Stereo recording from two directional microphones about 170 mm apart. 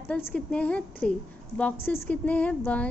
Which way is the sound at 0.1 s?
5° left (ahead or behind).